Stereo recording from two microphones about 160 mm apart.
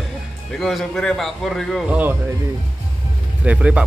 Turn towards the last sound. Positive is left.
turn(degrees=-5)  # may be behind; listen again after turning